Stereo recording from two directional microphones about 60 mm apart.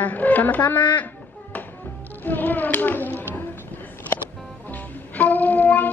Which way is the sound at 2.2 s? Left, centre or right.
Left.